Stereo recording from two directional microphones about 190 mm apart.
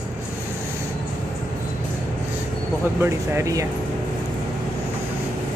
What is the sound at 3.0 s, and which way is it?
Speech, 15° right (ahead or behind).